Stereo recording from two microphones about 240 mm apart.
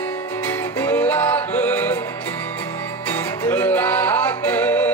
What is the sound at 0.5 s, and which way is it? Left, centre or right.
Music, centre.